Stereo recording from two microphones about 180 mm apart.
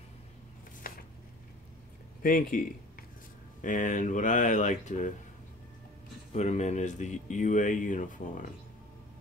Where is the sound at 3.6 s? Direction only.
45° left (ahead or behind).